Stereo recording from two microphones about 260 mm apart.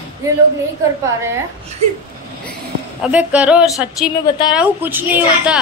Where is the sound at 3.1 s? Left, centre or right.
Centre.